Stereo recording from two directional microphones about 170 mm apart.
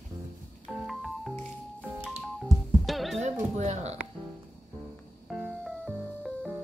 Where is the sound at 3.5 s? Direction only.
40° right (ahead or behind).